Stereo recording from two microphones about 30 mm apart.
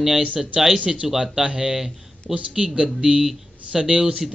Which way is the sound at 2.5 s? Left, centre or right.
Right.